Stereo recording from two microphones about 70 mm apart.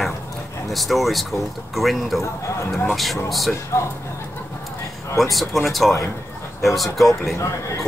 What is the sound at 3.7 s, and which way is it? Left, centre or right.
Speech, left.